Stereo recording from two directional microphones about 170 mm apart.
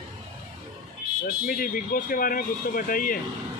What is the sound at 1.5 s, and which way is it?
Speech, 55° left (ahead or behind).